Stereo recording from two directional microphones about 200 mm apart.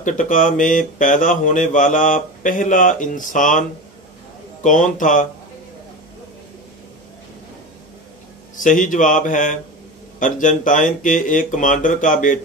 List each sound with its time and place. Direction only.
0.0 s speech: 40° left (ahead or behind)
4.6 s speech: 40° left (ahead or behind)
8.5 s speech: 40° left (ahead or behind)